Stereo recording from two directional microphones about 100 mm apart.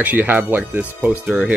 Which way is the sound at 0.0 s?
15° right (ahead or behind).